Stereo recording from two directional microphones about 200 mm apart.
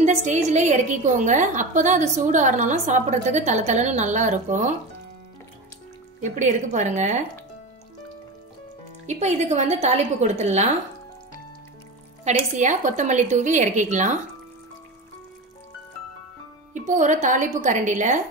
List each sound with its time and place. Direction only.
0.0 s a woman's voice: 35° right (ahead or behind)
6.2 s a woman's voice: 35° right (ahead or behind)
9.0 s a woman's voice: 35° right (ahead or behind)
12.3 s a woman's voice: 35° right (ahead or behind)
16.7 s a woman's voice: 40° right (ahead or behind)